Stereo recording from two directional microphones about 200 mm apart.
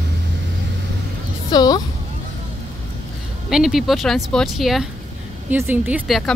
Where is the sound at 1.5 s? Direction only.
20° left (ahead or behind).